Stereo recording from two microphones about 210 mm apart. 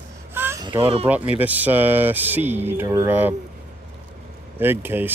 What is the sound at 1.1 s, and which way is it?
Speech, 10° right (ahead or behind).